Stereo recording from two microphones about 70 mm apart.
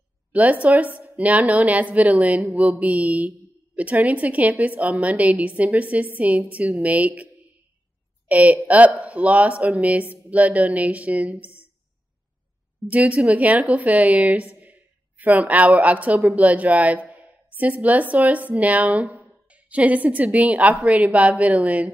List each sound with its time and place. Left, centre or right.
0.3 s speech: right
8.3 s a woman's voice: right
12.8 s a woman's voice: right